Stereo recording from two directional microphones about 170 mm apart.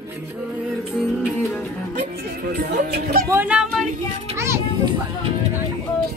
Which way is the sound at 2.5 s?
65° right (ahead or behind).